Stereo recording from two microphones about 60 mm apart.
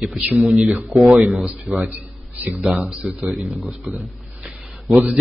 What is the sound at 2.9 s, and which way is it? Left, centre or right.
Speech, centre.